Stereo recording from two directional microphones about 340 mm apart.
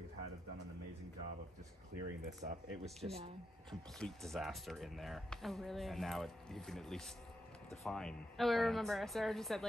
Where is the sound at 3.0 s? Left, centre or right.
Centre.